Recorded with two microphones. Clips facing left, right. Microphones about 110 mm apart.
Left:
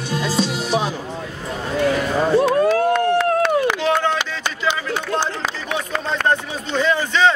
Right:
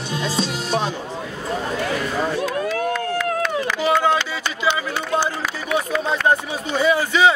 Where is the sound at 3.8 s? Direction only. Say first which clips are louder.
Right 1 dB; 5° right (ahead or behind).